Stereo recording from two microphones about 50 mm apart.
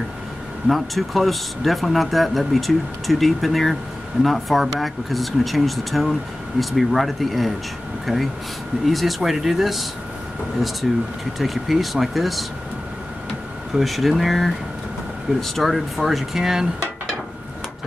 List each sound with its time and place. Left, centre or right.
0.7 s speech: centre
13.7 s speech: centre